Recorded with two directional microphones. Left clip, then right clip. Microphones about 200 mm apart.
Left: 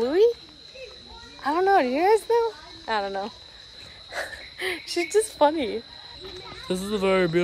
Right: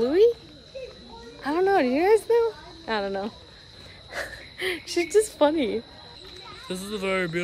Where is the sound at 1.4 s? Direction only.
Centre (ahead or behind).